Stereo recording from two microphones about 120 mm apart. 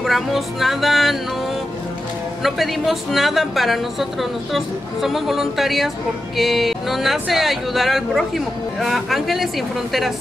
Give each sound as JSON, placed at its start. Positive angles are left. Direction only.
{"t": 0.0, "sound": "a woman's voice", "side_deg": 0}
{"t": 2.4, "sound": "a woman's voice", "side_deg": 0}